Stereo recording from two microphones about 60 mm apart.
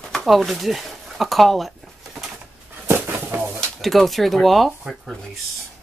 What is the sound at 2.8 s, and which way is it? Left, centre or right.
Dog, right.